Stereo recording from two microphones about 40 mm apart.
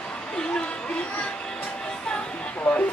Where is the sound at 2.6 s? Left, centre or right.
Left.